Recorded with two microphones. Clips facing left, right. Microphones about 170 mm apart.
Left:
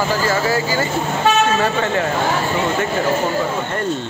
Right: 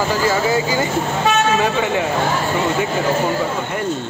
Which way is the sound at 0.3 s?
20° right (ahead or behind).